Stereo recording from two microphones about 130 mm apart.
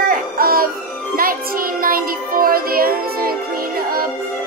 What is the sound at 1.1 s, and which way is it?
Child singing, 90° right.